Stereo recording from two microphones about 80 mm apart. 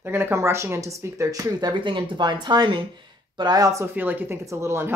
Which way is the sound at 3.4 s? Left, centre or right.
Right.